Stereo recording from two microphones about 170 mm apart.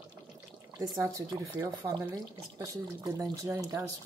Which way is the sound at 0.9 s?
20° right (ahead or behind).